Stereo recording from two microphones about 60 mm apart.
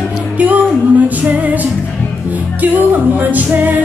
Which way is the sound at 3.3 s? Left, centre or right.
Right.